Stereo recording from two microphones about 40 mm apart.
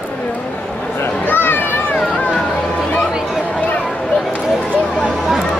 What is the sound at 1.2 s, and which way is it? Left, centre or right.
Children playing, left.